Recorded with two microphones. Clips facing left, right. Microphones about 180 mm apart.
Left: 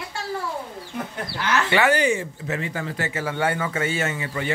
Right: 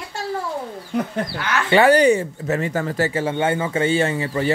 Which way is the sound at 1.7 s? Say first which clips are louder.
Right 8 dB; 35° right (ahead or behind).